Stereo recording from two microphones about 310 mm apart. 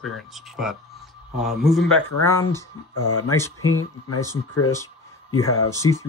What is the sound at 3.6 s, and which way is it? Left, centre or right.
Speech, left.